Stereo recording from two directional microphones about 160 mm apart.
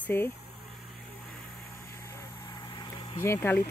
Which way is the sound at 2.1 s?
20° left (ahead or behind).